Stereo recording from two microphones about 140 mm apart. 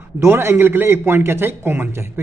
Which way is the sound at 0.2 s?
20° right (ahead or behind).